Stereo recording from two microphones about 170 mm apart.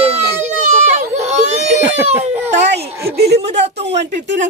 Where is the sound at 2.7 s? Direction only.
75° right (ahead or behind).